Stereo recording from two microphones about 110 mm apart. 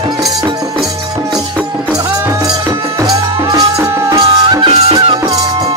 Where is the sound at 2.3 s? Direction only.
25° right (ahead or behind).